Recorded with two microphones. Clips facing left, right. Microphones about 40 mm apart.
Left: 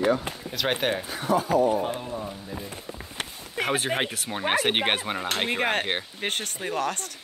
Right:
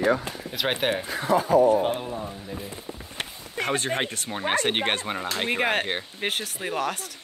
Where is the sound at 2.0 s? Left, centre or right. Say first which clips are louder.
Right 1 dB; centre.